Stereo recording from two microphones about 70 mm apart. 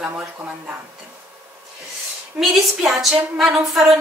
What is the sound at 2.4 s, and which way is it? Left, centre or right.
A woman's voice, centre.